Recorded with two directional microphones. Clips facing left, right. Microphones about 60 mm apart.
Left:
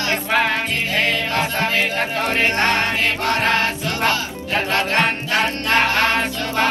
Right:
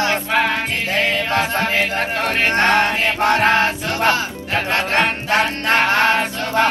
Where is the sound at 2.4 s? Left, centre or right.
Right.